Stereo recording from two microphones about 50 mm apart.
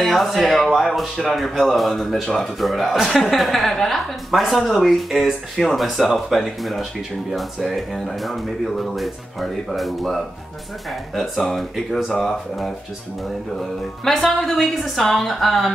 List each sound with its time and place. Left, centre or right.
0.0 s speech: centre